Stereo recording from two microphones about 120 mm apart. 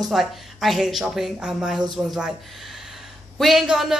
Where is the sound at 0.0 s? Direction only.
Centre (ahead or behind).